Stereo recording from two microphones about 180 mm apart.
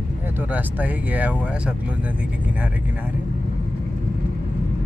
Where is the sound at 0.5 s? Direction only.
10° right (ahead or behind).